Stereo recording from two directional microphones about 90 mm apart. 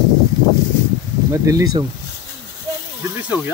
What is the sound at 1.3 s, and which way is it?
Speech, 40° right (ahead or behind).